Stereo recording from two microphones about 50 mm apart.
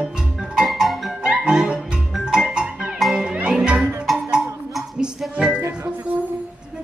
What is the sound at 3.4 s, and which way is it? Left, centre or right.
Music, centre.